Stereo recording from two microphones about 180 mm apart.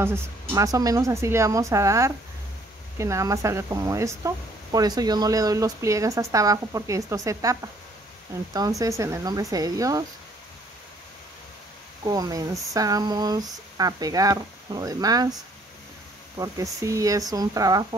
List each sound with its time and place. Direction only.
0.0 s a woman's voice: 15° right (ahead or behind)
12.0 s speech: 20° right (ahead or behind)
16.3 s speech: 20° right (ahead or behind)